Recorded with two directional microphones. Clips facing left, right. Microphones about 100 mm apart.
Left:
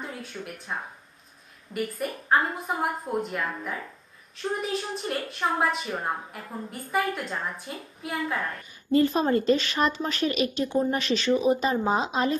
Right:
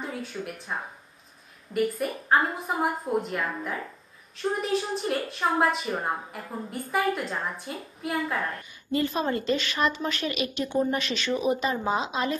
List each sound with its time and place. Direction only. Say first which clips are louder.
0.0 s a woman's voice: right 3 dB; centre (ahead or behind)
8.9 s speech: left 5 dB; 40° left (ahead or behind)